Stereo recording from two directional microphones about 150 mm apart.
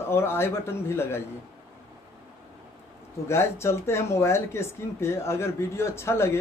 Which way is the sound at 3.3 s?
15° left (ahead or behind).